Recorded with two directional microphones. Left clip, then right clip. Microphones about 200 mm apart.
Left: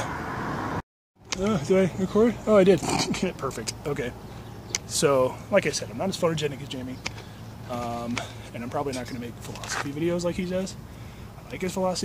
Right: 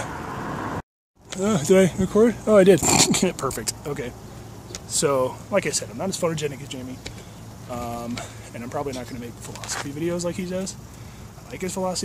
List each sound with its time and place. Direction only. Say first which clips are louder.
0.0 s vehicle: even; 5° left (ahead or behind)
1.4 s speech: right 5 dB; 40° right (ahead or behind)
2.0 s speech: right 4 dB; 20° right (ahead or behind)
2.8 s speech: right 7 dB; 40° right (ahead or behind)
3.8 s speech: even; centre (ahead or behind)